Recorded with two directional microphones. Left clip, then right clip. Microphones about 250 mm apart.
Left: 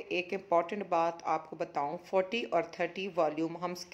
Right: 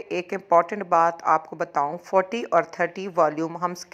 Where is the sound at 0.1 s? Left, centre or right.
Centre.